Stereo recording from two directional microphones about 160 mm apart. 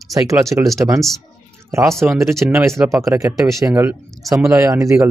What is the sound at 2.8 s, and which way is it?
A man's voice, 20° right (ahead or behind).